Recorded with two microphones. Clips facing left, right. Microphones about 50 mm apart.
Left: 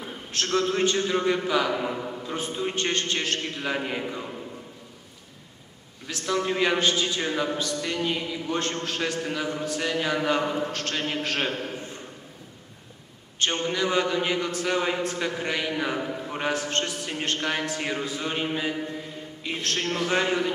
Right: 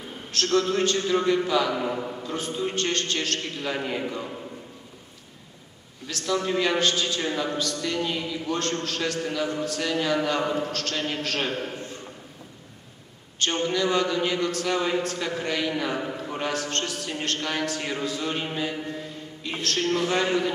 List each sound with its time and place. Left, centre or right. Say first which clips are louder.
0.3 s a man's voice: right 2 dB; centre
2.2 s a man's voice: even; centre
4.0 s a man's voice: right 2 dB; centre
6.0 s a man's voice: even; centre
13.4 s a man's voice: right 1 dB; centre